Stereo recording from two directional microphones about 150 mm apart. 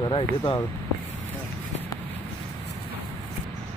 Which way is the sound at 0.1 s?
30° left (ahead or behind).